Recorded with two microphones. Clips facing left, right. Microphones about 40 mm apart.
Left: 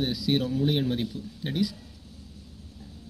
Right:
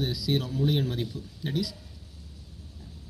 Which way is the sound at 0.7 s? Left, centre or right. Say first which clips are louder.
Left 2 dB; centre.